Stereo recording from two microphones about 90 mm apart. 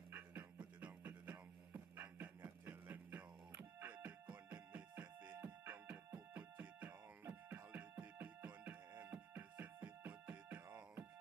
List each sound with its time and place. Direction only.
0.1 s music: 20° right (ahead or behind)